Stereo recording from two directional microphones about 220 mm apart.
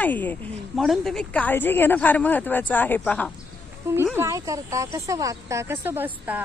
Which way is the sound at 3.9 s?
10° right (ahead or behind).